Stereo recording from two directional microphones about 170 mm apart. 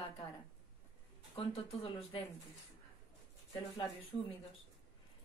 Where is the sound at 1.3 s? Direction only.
35° left (ahead or behind).